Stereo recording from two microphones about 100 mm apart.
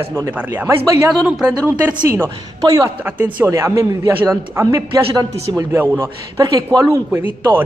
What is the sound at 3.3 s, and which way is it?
A man's voice, 25° right (ahead or behind).